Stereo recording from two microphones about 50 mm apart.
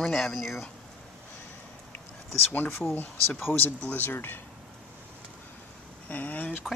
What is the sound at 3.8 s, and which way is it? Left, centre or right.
Speech, left.